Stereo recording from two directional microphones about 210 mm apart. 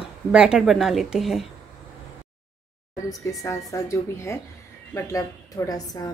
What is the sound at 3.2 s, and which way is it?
A woman's voice, 15° left (ahead or behind).